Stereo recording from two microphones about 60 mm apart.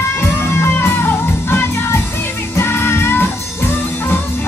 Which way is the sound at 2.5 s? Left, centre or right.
Left.